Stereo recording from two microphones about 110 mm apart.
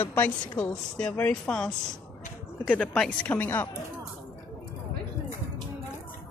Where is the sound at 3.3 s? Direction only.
20° left (ahead or behind).